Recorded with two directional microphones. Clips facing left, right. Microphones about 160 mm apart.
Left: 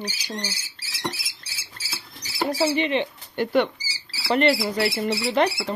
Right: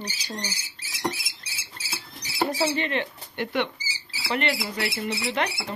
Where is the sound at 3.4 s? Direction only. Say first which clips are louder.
Left 6 dB; 40° left (ahead or behind).